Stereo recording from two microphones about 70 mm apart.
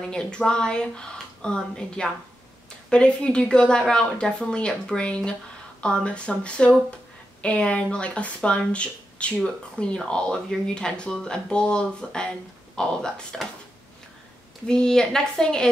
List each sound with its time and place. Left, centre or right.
0.0 s speech: centre
14.7 s speech: centre